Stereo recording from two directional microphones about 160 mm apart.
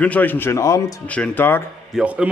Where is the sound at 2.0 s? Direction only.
5° right (ahead or behind).